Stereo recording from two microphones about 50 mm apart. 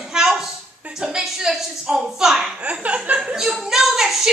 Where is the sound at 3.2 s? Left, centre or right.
Centre.